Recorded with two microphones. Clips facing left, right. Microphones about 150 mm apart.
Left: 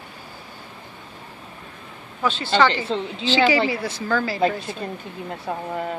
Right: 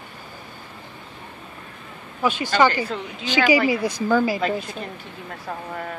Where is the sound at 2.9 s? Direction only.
25° left (ahead or behind).